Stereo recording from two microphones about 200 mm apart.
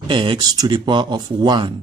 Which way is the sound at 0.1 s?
25° right (ahead or behind).